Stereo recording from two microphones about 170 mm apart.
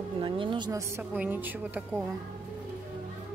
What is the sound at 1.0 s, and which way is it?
A woman's voice, 10° right (ahead or behind).